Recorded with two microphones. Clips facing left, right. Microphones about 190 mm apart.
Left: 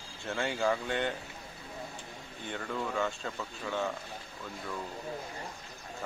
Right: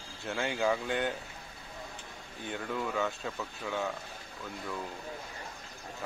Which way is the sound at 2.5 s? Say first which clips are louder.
Right 1 dB; 5° right (ahead or behind).